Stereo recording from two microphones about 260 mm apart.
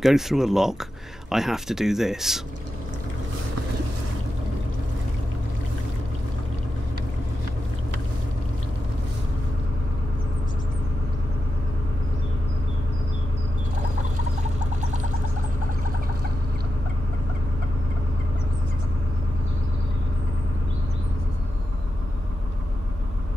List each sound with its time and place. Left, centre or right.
0.0 s speech: centre
14.8 s gargling: right